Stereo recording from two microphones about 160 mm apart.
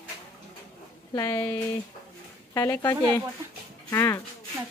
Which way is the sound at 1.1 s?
25° left (ahead or behind).